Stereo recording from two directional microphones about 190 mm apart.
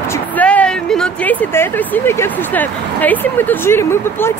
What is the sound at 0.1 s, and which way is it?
Speech, 10° left (ahead or behind).